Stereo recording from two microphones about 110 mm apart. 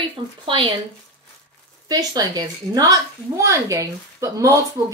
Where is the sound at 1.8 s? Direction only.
35° right (ahead or behind).